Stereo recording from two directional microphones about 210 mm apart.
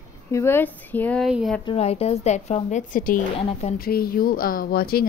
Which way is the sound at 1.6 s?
30° left (ahead or behind).